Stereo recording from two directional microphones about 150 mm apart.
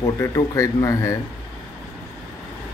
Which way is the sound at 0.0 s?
20° left (ahead or behind).